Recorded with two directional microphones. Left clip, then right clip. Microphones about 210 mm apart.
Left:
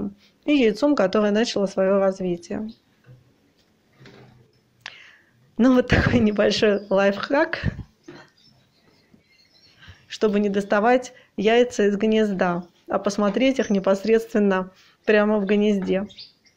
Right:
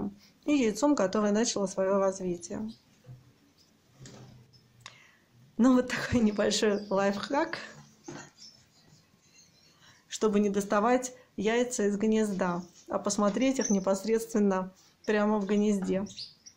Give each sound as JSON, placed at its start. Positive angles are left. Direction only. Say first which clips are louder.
{"t": 0.4, "sound": "speech", "louder": "left 8 dB", "side_deg": 5}
{"t": 4.8, "sound": "a sound", "louder": "left 11 dB", "side_deg": 15}
{"t": 5.6, "sound": "speech", "louder": "left 8 dB", "side_deg": 15}
{"t": 9.8, "sound": "speech", "louder": "left 8 dB", "side_deg": 10}